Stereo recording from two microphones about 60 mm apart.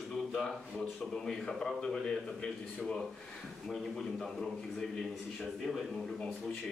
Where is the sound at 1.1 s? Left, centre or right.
Centre.